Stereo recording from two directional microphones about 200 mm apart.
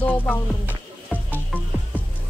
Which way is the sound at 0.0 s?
5° left (ahead or behind).